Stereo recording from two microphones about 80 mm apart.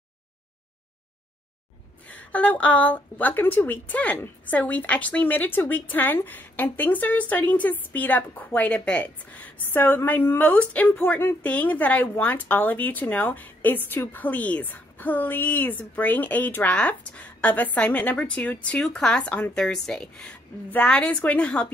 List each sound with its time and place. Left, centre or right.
2.0 s a woman's voice: centre